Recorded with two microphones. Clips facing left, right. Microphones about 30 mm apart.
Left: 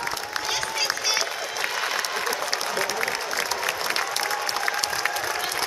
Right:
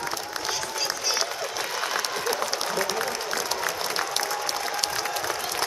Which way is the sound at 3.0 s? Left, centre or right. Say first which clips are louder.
Left 2 dB; left.